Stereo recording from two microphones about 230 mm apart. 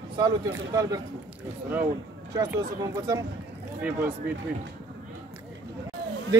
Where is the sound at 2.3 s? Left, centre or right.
Centre.